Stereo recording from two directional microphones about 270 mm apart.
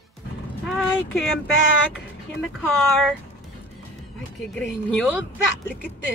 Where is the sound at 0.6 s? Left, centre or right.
Centre.